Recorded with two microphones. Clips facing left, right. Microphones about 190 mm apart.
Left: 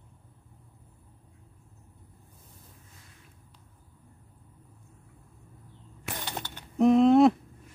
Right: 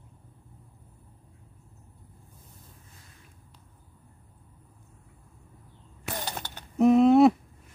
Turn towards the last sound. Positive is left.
turn(degrees=-5)  # may be behind; listen again after turning